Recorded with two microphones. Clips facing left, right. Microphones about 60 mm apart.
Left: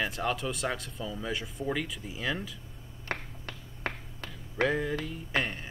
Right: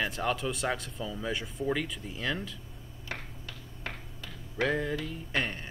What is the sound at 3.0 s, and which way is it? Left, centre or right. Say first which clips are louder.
Finger snapping: left 4 dB; left.